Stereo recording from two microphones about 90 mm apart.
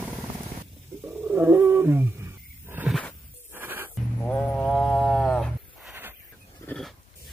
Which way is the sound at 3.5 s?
20° right (ahead or behind).